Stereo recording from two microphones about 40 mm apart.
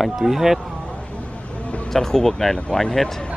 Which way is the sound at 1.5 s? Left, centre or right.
Left.